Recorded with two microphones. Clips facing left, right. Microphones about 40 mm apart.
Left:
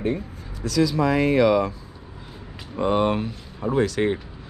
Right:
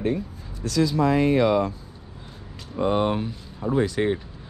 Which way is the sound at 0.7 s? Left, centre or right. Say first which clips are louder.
Even; left.